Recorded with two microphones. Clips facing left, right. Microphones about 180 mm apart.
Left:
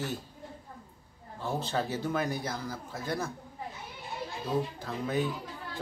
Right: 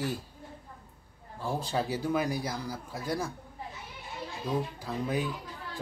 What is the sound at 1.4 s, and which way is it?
Speech, 10° right (ahead or behind).